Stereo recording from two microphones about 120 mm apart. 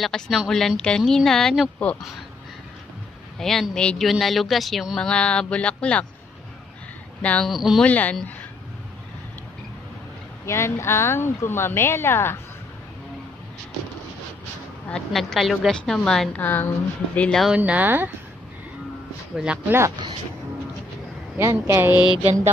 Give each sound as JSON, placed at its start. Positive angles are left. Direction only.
{"t": 0.0, "sound": "speech", "side_deg": 0}
{"t": 3.3, "sound": "speech", "side_deg": 5}
{"t": 7.2, "sound": "a woman's voice", "side_deg": 10}
{"t": 7.5, "sound": "speech", "side_deg": 0}
{"t": 7.8, "sound": "a woman's voice", "side_deg": 10}
{"t": 10.4, "sound": "speech", "side_deg": 25}
{"t": 14.9, "sound": "a woman's voice", "side_deg": 5}
{"t": 17.5, "sound": "speech", "side_deg": -10}
{"t": 19.3, "sound": "speech", "side_deg": -10}
{"t": 21.4, "sound": "speech", "side_deg": -20}